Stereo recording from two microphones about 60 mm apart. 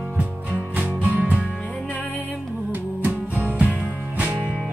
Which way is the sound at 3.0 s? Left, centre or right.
Right.